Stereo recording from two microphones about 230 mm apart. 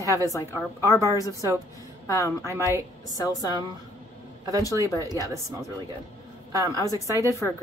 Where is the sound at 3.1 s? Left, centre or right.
Centre.